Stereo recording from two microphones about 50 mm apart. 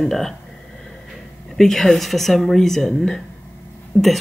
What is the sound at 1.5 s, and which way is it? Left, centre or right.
Speech, centre.